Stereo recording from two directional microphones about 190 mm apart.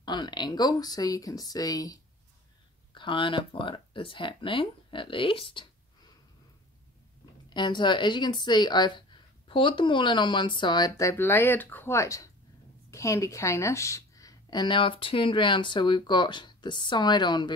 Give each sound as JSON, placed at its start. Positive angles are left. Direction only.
{"t": 0.0, "sound": "speech", "side_deg": 25}
{"t": 7.4, "sound": "speech", "side_deg": 25}